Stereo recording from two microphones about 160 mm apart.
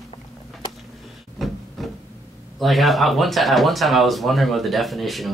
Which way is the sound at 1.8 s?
Centre (ahead or behind).